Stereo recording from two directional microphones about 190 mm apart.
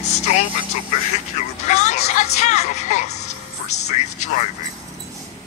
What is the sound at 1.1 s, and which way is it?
Speech, 35° left (ahead or behind).